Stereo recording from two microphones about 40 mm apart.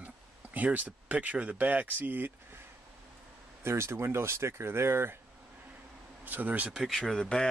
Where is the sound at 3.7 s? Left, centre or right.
Right.